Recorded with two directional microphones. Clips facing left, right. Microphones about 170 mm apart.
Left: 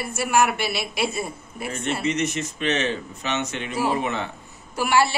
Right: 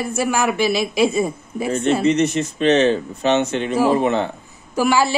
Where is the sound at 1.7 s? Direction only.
30° right (ahead or behind).